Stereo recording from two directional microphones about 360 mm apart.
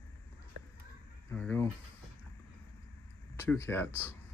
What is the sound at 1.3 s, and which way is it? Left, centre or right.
Speech, centre.